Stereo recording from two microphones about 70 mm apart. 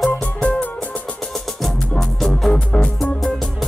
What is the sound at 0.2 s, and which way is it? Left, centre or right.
Music, centre.